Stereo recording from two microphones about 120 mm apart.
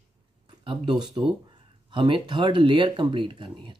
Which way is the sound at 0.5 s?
40° right (ahead or behind).